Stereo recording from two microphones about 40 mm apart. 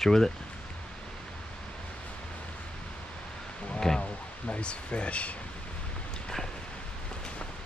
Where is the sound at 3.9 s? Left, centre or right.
Centre.